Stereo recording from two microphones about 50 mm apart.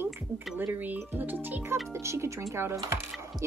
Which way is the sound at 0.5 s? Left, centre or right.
Right.